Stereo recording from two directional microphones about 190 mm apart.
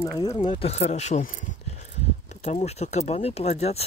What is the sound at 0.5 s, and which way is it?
Speech, 35° left (ahead or behind).